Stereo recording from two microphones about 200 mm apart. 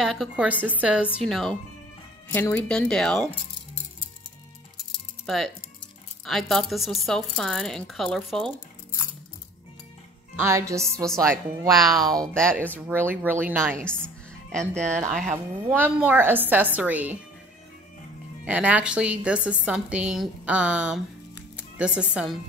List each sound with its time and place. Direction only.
0.0 s a woman's voice: centre (ahead or behind)
5.2 s a woman's voice: centre (ahead or behind)
10.3 s a woman's voice: 15° right (ahead or behind)
11.7 s a woman's voice: centre (ahead or behind)
12.7 s a woman's voice: 10° right (ahead or behind)
13.8 s music: 5° left (ahead or behind)
14.8 s a woman's voice: 5° left (ahead or behind)
15.0 s speech: 35° right (ahead or behind)
15.3 s a woman's voice: 10° right (ahead or behind)
18.4 s a woman's voice: 5° right (ahead or behind)